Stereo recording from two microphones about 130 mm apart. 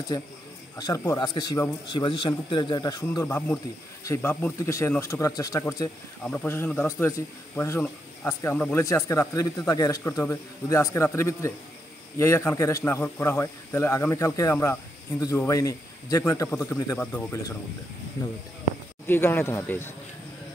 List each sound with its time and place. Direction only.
0.7 s speech: 25° left (ahead or behind); by 4.6 s 10° left (ahead or behind)
4.6 s a man's voice: 25° left (ahead or behind)
6.2 s a man's voice: 15° left (ahead or behind)
19.0 s speech: 15° left (ahead or behind)